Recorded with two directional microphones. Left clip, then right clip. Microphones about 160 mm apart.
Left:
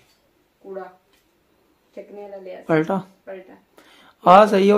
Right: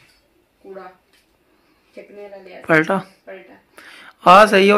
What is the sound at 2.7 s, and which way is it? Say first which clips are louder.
Speech: right 5 dB; centre (ahead or behind).